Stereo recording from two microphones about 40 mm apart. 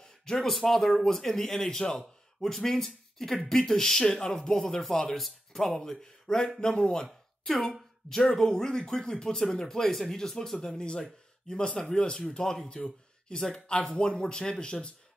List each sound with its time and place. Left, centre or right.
0.0 s a man's voice: centre
7.4 s speech: centre; by 12.3 s left
12.3 s speech: centre; by 14.0 s left
14.0 s speech: centre